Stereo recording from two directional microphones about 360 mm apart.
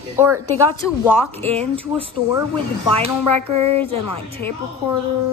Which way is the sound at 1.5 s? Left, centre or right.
Centre.